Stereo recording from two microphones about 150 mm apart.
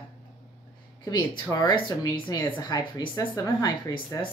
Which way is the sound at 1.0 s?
30° left (ahead or behind).